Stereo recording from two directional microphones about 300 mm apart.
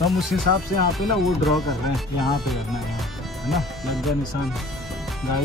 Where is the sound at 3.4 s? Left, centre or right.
Centre.